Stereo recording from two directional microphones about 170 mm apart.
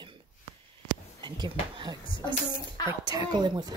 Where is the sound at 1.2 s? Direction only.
25° right (ahead or behind).